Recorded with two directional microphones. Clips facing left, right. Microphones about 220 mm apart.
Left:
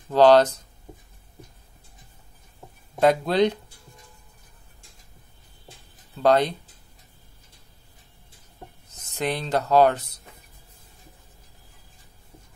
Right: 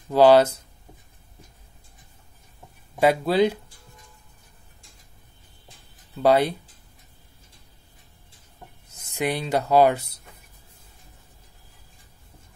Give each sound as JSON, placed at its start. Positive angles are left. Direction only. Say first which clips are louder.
{"t": 0.1, "sound": "speech", "louder": "even", "side_deg": -10}
{"t": 3.0, "sound": "speech", "louder": "even", "side_deg": -5}
{"t": 6.1, "sound": "speech", "louder": "right 1 dB", "side_deg": -10}
{"t": 8.9, "sound": "speech", "louder": "right 1 dB", "side_deg": -10}